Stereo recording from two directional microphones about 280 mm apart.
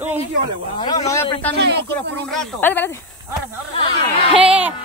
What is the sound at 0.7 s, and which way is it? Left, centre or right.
Speech, centre.